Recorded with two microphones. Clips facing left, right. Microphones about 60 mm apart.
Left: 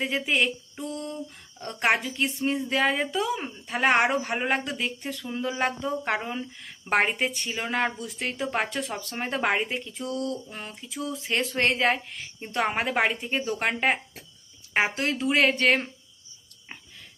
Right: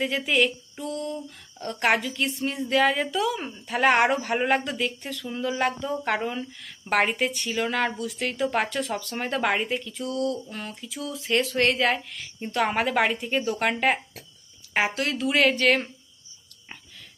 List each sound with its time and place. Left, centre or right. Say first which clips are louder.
0.0 s speech: right 2 dB; centre
3.4 s speech: right 3 dB; centre; by 15.9 s left